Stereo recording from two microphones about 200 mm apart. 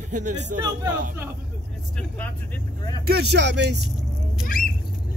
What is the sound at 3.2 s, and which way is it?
Speech, 60° right (ahead or behind).